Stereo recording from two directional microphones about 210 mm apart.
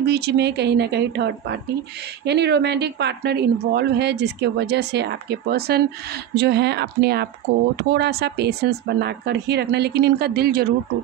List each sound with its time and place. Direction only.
0.0 s a woman's voice: 50° right (ahead or behind)